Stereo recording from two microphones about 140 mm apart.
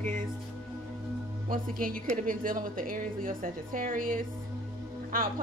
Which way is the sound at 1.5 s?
85° right.